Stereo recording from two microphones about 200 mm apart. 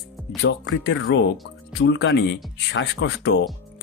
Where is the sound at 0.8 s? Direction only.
60° left (ahead or behind).